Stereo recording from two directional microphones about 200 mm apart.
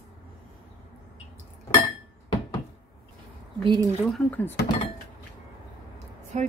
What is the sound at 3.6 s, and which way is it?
Speech, 20° right (ahead or behind).